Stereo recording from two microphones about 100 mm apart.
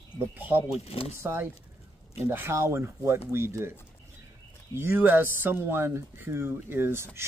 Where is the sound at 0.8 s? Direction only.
80° left.